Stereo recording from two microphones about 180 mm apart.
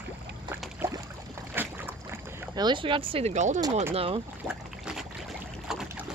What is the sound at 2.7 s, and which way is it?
Speech, 30° right (ahead or behind).